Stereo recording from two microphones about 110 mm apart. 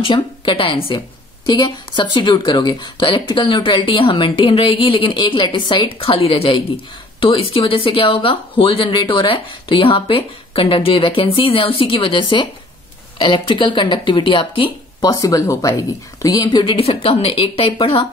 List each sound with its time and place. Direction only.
0.0 s a woman's voice: 50° left (ahead or behind)
5.9 s a woman's voice: 55° left (ahead or behind)
15.0 s a woman's voice: 30° left (ahead or behind); by 18.0 s 55° left (ahead or behind)